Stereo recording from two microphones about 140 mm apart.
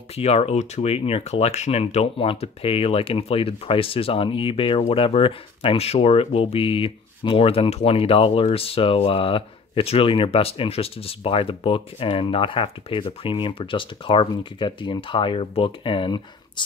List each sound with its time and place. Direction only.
0.1 s speech: 45° left (ahead or behind)